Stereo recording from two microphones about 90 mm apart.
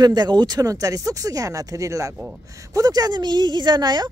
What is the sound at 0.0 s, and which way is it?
Speech, 50° right (ahead or behind).